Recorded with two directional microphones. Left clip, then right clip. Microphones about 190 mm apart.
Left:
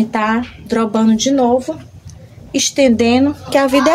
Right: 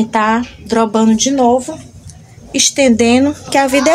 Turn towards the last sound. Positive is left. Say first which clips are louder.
# right 1 dB
turn(degrees=0)  # may be behind; listen again after turning